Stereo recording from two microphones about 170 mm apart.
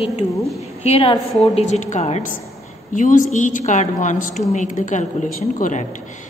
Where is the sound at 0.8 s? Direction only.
35° left (ahead or behind).